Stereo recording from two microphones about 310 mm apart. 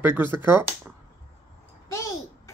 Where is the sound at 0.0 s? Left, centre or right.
Centre.